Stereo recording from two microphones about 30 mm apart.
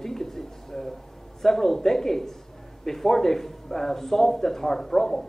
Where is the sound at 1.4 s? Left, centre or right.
Centre.